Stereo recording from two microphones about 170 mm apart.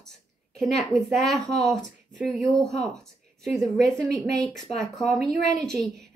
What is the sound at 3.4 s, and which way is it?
A woman's voice, centre (ahead or behind).